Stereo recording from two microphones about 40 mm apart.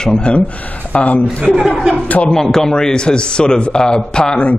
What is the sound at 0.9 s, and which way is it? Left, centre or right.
Speech, left.